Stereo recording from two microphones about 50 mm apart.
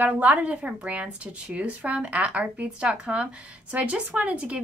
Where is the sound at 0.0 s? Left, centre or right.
Right.